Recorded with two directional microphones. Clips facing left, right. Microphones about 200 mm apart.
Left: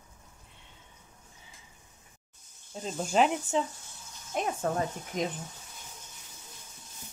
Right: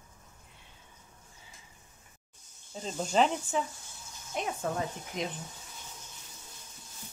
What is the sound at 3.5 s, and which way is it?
Speech, 25° left (ahead or behind).